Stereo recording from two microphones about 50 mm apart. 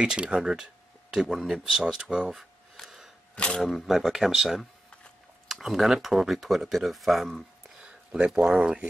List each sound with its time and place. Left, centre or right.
0.0 s speech: centre
3.3 s speech: left
3.6 s speech: centre
7.8 s a sound: right
8.4 s speech: centre